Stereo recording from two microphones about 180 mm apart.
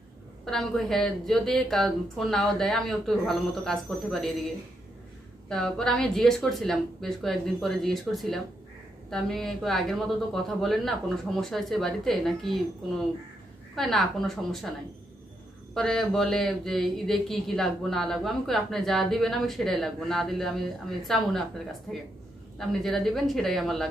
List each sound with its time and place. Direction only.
0.5 s speech: centre (ahead or behind)
5.5 s speech: centre (ahead or behind)
13.7 s speech: centre (ahead or behind)
15.7 s speech: 5° left (ahead or behind)